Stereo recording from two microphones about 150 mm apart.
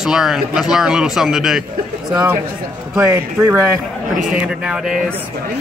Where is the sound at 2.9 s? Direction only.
20° right (ahead or behind).